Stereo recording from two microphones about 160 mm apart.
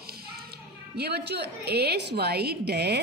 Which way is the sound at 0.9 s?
90° right.